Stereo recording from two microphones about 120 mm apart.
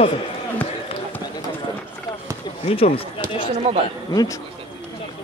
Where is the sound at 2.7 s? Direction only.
55° left (ahead or behind).